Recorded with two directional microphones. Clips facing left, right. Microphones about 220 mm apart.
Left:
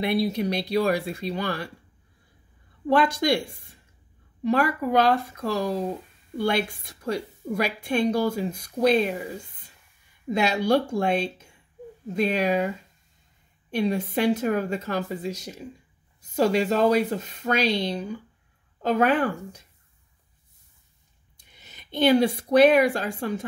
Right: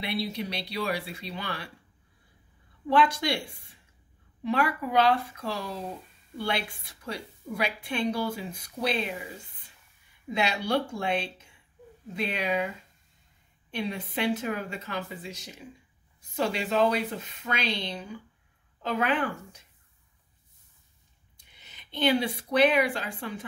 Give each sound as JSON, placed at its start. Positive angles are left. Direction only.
{"t": 0.0, "sound": "a woman's voice", "side_deg": 50}
{"t": 2.9, "sound": "a woman's voice", "side_deg": 45}
{"t": 4.4, "sound": "a woman's voice", "side_deg": 45}
{"t": 10.3, "sound": "a woman's voice", "side_deg": 45}
{"t": 21.5, "sound": "speech", "side_deg": 45}